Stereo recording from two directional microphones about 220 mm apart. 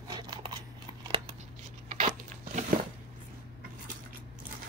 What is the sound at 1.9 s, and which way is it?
Crunch, 35° right (ahead or behind).